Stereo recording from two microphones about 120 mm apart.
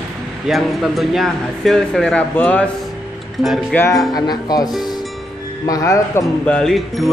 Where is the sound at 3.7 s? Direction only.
20° left (ahead or behind).